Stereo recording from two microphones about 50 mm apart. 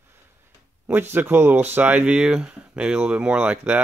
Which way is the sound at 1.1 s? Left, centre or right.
Right.